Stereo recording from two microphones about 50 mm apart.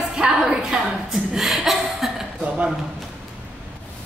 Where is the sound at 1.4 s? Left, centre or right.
Centre.